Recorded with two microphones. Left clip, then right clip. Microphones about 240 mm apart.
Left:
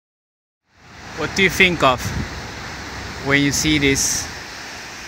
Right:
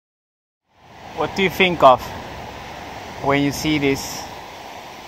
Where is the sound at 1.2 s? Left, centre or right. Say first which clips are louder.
Left 3 dB; left.